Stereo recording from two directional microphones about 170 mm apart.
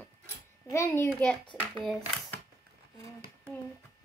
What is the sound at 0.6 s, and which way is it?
Speech, 15° left (ahead or behind).